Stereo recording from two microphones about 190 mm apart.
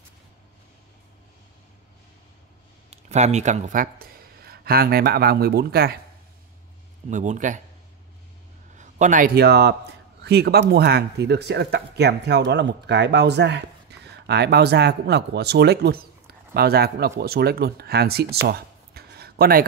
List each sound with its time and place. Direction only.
2.9 s speech: 35° right (ahead or behind); by 5.9 s 55° right (ahead or behind)
7.1 s speech: 40° right (ahead or behind)
8.7 s a man's voice: 40° right (ahead or behind); by 18.4 s 55° right (ahead or behind)
18.5 s a sound: 55° right (ahead or behind)